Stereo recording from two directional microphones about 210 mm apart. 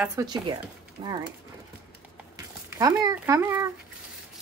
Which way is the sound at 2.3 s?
15° right (ahead or behind).